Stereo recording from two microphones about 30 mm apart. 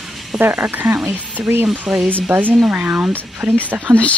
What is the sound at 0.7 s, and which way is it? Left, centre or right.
Speech, right.